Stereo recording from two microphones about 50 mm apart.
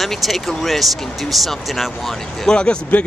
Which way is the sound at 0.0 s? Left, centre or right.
Centre.